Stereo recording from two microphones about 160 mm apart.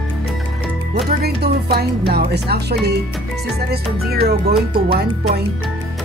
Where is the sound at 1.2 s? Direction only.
85° right.